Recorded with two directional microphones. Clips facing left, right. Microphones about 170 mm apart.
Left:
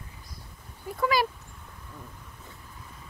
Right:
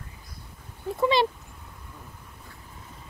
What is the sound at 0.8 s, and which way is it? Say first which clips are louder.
Speech: right 3 dB; 25° right (ahead or behind).